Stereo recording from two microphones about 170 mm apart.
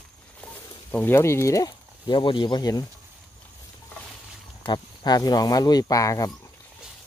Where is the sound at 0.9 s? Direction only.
15° left (ahead or behind).